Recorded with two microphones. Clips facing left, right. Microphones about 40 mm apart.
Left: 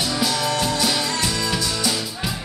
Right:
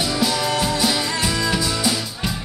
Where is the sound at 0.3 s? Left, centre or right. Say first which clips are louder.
Right 1 dB; centre.